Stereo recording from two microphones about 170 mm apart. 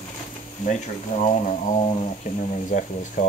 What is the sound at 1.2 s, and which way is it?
Speech, 40° left (ahead or behind).